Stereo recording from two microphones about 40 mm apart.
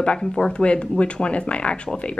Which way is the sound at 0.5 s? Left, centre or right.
Left.